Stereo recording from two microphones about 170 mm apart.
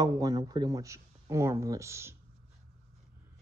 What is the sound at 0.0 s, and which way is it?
Speech, 20° right (ahead or behind).